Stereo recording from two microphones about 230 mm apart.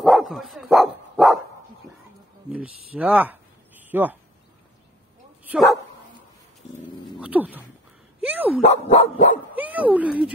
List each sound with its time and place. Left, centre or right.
0.0 s dog: centre
2.5 s speech: centre
5.4 s dog: centre
7.2 s a sound: centre
8.2 s dog: centre
8.5 s dog: left
9.6 s speech: centre